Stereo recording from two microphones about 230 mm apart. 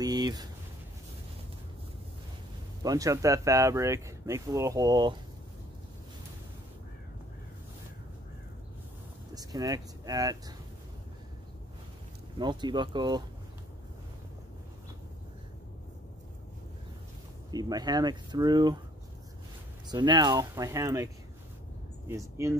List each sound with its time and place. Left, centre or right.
0.0 s speech: centre
2.8 s speech: centre
9.3 s speech: centre
12.4 s speech: centre
17.5 s speech: centre
19.9 s speech: centre